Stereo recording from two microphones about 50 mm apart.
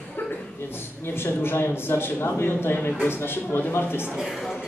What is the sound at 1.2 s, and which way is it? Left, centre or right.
A woman's voice, left.